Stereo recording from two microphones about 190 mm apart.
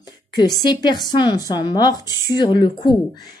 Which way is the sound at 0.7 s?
20° left (ahead or behind).